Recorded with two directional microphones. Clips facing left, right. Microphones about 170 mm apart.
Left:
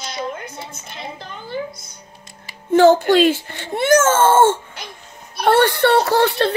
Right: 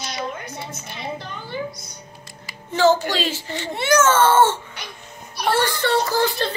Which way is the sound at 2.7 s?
55° left (ahead or behind).